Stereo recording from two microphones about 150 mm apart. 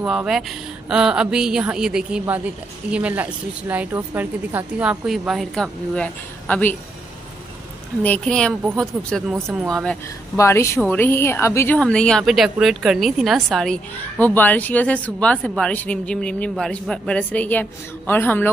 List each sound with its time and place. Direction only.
0.0 s a woman's voice: 5° right (ahead or behind); by 6.8 s 10° left (ahead or behind)
8.0 s a woman's voice: 10° left (ahead or behind)
10.3 s a woman's voice: 20° left (ahead or behind)